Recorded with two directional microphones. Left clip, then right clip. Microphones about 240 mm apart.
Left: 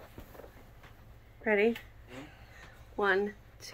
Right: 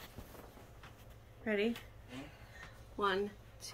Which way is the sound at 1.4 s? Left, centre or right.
Centre.